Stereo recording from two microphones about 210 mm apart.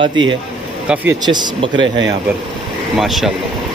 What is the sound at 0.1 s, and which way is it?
Speech, 60° right (ahead or behind).